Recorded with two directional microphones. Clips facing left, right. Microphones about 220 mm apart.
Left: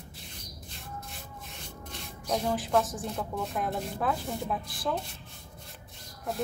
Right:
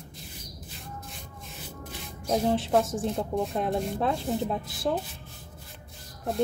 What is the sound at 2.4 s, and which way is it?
Speech, 25° right (ahead or behind).